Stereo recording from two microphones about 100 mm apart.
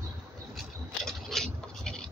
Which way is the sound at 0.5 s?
5° left (ahead or behind).